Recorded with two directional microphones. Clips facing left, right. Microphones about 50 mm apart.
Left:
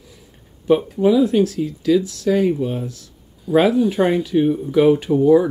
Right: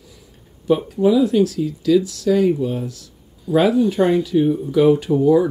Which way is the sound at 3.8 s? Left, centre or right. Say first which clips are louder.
Right 1 dB; centre.